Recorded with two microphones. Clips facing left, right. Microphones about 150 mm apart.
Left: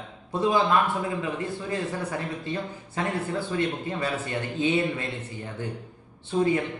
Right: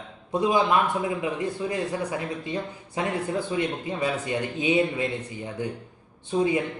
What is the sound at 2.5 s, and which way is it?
A man's voice, 15° right (ahead or behind).